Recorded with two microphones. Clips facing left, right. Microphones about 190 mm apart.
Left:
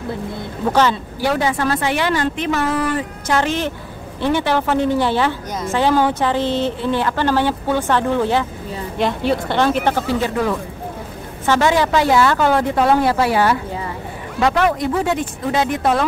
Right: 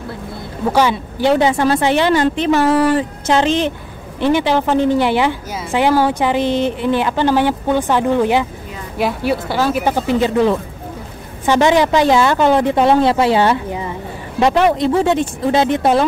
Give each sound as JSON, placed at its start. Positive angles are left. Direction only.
{"t": 1.2, "sound": "a woman's voice", "side_deg": -25}